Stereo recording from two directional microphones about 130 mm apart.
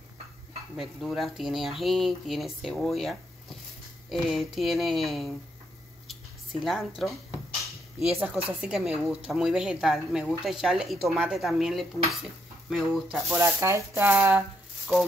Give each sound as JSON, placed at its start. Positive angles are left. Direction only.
{"t": 0.7, "sound": "a woman's voice", "side_deg": 0}
{"t": 6.6, "sound": "a woman's voice", "side_deg": 0}
{"t": 8.5, "sound": "a woman's voice", "side_deg": -10}
{"t": 13.3, "sound": "speech", "side_deg": -20}